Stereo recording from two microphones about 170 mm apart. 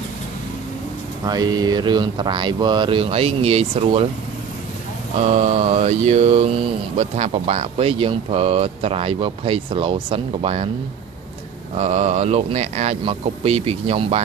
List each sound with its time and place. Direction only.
1.2 s speech: 25° right (ahead or behind)
5.2 s a sound: 40° right (ahead or behind)
5.7 s speech: 40° right (ahead or behind)
11.7 s speech: 40° right (ahead or behind)